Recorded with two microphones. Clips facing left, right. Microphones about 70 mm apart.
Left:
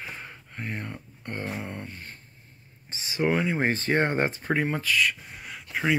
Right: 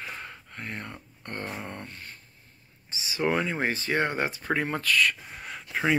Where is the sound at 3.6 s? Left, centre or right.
Left.